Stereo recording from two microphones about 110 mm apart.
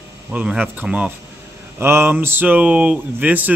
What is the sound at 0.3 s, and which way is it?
Speech, 10° right (ahead or behind).